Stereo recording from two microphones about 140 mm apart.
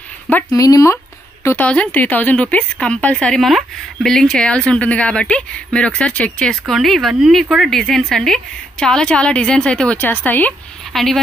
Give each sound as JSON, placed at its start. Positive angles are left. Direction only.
{"t": 0.5, "sound": "a woman's voice", "side_deg": 25}